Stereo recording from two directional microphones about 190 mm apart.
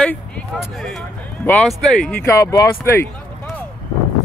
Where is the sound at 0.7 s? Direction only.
Centre (ahead or behind).